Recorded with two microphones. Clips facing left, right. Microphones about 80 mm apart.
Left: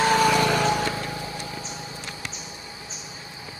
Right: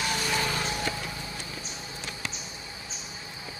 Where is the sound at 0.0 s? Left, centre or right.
Left.